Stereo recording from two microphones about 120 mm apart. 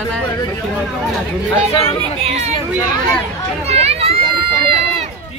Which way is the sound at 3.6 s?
60° right (ahead or behind).